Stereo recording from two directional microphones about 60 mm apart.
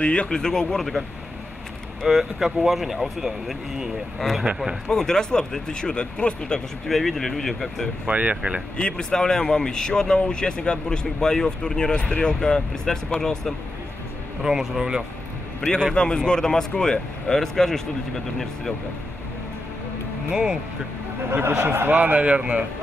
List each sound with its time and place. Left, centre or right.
0.0 s speech: left; by 1.0 s centre
2.0 s speech: centre
4.8 s speech: centre
6.9 s speech: centre
8.1 s speech: right
8.7 s speech: centre
14.4 s speech: centre
15.6 s speech: centre
21.6 s speech: right; by 22.7 s centre